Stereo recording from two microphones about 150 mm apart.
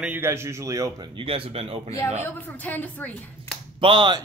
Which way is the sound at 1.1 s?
35° right (ahead or behind).